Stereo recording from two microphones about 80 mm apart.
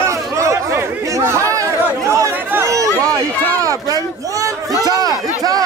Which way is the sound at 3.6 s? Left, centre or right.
Right.